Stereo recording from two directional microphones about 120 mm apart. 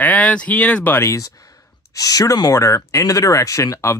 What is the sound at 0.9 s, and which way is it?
Speech, 25° left (ahead or behind).